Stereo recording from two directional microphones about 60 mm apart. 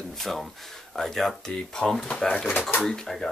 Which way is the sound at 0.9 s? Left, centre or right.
Centre.